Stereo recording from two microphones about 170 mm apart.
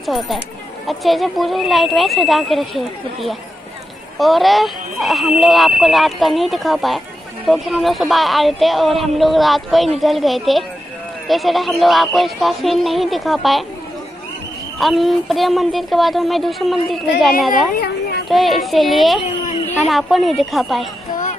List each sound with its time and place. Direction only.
0.0 s speech: centre (ahead or behind)
14.8 s speech: centre (ahead or behind)
17.7 s children playing: 65° left (ahead or behind)
18.3 s speech: centre (ahead or behind)